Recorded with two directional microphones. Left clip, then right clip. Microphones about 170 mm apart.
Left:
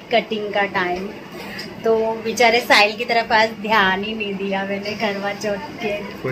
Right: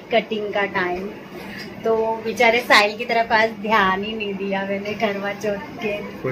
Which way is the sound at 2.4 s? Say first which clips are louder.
Left 1 dB; 15° left (ahead or behind).